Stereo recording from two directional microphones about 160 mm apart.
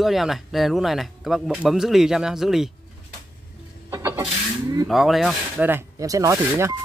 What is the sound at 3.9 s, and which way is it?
Vehicle, 20° right (ahead or behind).